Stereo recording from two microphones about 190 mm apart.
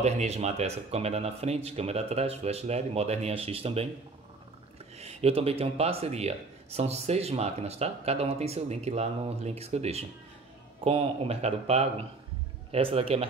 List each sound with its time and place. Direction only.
0.0 s speech: 35° right (ahead or behind)
4.9 s speech: 35° right (ahead or behind)